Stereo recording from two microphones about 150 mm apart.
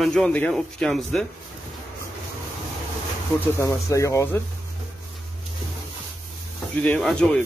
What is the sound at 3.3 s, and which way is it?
Speech, 20° left (ahead or behind).